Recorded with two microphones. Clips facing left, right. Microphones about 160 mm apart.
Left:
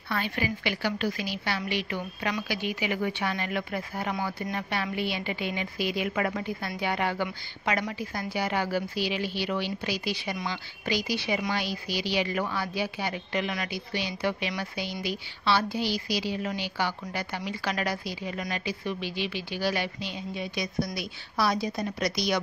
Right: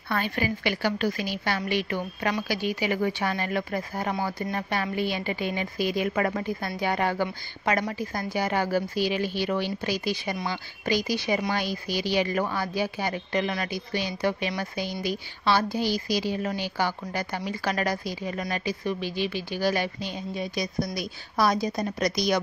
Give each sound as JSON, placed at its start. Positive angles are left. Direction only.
{"t": 0.1, "sound": "a woman's voice", "side_deg": -45}